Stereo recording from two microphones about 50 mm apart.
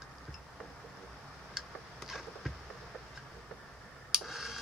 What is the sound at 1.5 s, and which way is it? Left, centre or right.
Tick-tock, centre.